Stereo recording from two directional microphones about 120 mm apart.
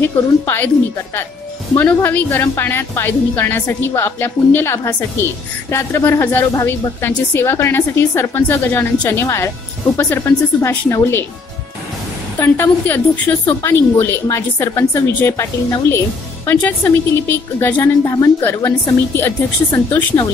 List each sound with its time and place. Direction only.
0.0 s a woman's voice: 20° left (ahead or behind)
1.8 s a woman's voice: 15° left (ahead or behind)
12.4 s a woman's voice: 15° left (ahead or behind)
18.0 s a woman's voice: 30° left (ahead or behind)
18.4 s a woman's voice: 20° left (ahead or behind)